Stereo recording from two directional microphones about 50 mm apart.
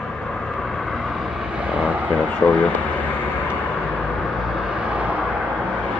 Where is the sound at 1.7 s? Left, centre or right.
Right.